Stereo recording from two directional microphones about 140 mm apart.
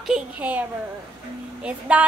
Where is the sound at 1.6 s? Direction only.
10° right (ahead or behind).